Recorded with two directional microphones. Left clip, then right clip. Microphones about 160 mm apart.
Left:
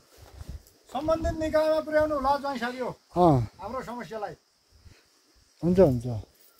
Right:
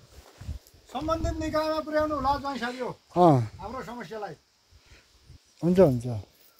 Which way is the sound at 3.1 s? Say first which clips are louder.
Right 2 dB; 5° right (ahead or behind).